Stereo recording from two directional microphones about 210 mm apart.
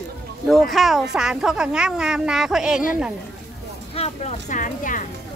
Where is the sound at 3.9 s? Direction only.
30° left (ahead or behind).